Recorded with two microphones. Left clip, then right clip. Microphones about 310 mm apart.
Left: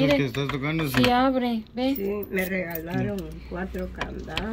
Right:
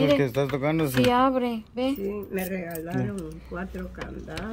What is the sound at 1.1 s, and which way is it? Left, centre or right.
Speech, right.